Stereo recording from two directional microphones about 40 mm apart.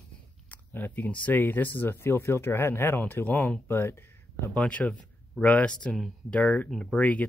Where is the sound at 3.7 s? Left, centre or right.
Left.